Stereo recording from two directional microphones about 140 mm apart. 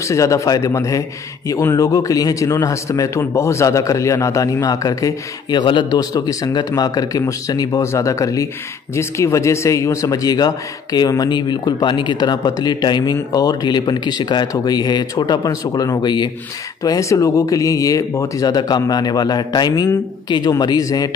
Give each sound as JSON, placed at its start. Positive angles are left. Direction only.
{"t": 0.0, "sound": "a man's voice", "side_deg": 20}